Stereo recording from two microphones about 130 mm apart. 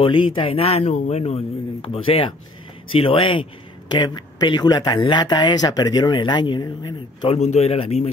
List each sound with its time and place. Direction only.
0.0 s a man's voice: 40° left (ahead or behind)
7.2 s a man's voice: 55° left (ahead or behind)